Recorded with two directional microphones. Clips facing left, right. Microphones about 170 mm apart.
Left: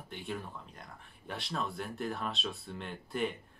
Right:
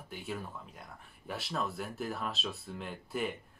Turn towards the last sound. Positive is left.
turn(degrees=-5)  # may be behind; listen again after turning